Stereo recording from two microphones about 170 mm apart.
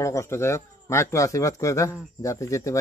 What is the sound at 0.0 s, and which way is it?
Speech, 15° left (ahead or behind).